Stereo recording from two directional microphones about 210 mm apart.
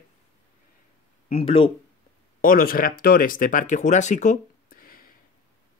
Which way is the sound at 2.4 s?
40° left (ahead or behind).